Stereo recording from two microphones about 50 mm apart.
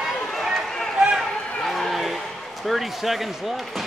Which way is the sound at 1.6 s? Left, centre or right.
Centre.